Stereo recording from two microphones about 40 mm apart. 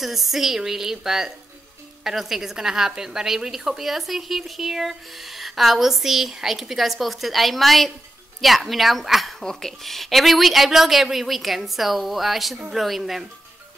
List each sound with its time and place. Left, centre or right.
0.0 s a woman's voice: centre